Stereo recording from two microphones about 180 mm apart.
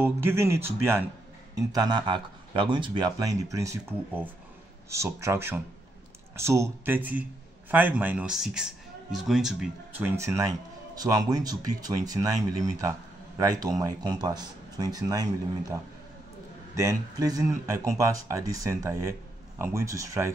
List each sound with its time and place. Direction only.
0.0 s speech: 15° right (ahead or behind)
1.7 s a man's voice: 25° right (ahead or behind)
16.7 s speech: 20° right (ahead or behind)